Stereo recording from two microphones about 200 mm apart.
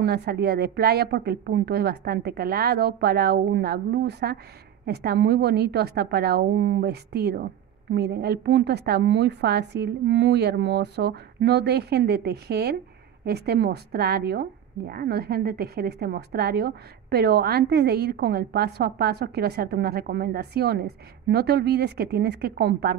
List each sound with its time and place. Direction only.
0.0 s a woman's voice: 55° right (ahead or behind)